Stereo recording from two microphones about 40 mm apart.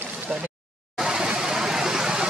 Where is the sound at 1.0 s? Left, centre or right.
Centre.